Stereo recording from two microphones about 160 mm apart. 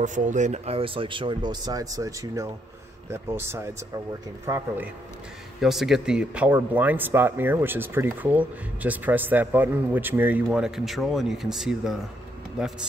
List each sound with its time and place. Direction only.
0.0 s speech: 50° right (ahead or behind); by 4.8 s 15° right (ahead or behind)
5.6 s speech: centre (ahead or behind)